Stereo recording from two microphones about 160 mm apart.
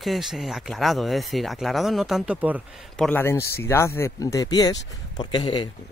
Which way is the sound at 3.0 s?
10° left (ahead or behind).